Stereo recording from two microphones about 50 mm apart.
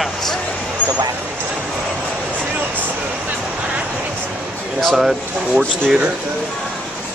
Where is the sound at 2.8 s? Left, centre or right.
Right.